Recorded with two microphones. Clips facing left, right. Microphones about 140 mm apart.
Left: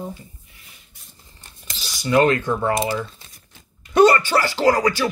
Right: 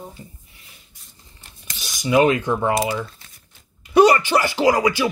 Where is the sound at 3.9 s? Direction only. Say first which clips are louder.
Right 1 dB; 10° right (ahead or behind).